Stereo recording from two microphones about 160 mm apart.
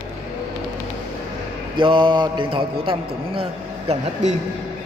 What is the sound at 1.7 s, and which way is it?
A man's voice, 30° right (ahead or behind).